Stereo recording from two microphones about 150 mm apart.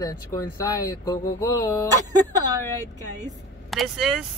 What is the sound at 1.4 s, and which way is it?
Speech, 25° left (ahead or behind).